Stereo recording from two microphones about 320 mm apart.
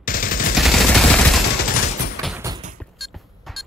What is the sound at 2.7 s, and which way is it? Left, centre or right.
Music, centre.